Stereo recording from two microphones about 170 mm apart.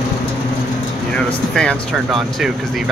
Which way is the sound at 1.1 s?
5° left (ahead or behind).